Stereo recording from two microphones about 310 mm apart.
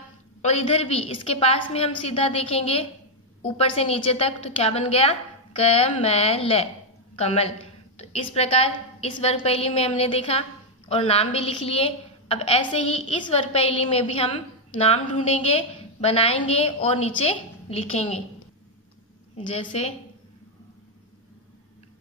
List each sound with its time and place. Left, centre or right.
0.4 s a woman's voice: left
19.3 s a woman's voice: centre